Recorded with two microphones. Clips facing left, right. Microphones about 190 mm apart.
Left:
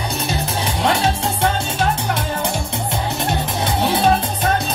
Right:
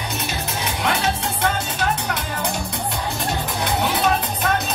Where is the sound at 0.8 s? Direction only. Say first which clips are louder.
Left 5 dB; 30° left (ahead or behind).